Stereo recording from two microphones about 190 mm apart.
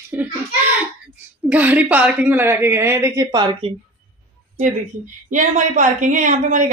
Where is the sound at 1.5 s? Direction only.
10° right (ahead or behind).